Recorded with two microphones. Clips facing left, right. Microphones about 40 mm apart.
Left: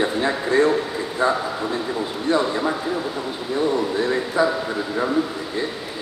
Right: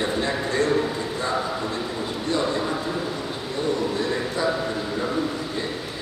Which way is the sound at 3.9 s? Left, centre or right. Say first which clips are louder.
Left 5 dB; centre.